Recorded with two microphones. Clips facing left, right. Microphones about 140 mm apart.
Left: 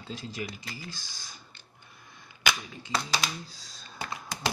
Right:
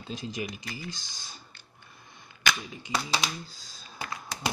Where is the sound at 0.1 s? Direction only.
20° right (ahead or behind).